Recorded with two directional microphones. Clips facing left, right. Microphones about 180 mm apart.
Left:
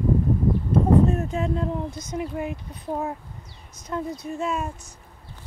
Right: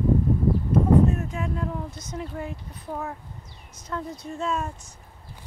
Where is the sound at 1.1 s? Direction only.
30° left (ahead or behind).